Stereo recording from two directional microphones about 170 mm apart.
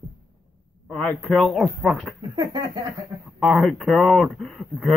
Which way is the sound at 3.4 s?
Centre (ahead or behind).